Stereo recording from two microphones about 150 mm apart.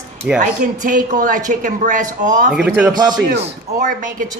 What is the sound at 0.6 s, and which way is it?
Speech, 55° right (ahead or behind).